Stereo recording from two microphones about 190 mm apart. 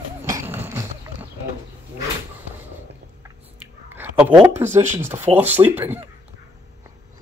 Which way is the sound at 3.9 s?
10° right (ahead or behind).